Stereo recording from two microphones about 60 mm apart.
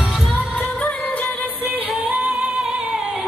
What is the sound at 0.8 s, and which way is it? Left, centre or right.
Music, left.